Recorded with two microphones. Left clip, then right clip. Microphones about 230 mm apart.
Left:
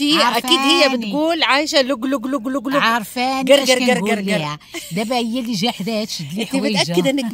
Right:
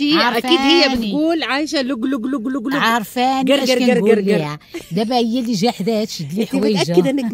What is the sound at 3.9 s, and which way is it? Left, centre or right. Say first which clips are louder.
Speech: right 6 dB; left.